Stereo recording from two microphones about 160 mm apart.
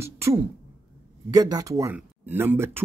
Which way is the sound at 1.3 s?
20° right (ahead or behind).